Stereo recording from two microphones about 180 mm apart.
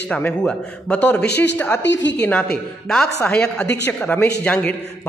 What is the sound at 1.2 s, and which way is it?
Speech, 70° left (ahead or behind).